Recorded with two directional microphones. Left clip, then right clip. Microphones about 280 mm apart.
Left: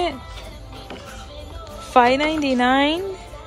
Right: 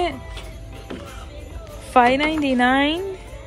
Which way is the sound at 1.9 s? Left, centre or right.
Centre.